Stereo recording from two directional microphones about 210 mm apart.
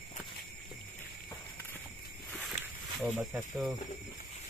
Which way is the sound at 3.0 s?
5° right (ahead or behind).